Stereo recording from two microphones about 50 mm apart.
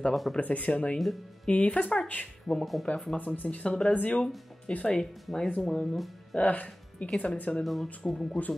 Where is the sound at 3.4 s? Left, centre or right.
Left.